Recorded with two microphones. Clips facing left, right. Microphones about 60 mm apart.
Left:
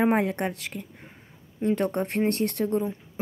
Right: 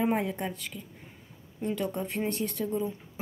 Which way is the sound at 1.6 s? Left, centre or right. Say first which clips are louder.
Left 6 dB; left.